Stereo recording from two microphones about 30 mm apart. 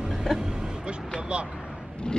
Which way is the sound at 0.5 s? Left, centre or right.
Right.